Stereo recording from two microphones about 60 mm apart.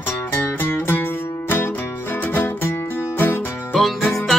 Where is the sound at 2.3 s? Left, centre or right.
Left.